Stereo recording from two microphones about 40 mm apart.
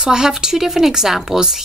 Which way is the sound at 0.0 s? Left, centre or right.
Centre.